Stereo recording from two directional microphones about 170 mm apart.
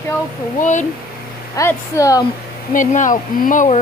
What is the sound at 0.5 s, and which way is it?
Speech, 45° left (ahead or behind).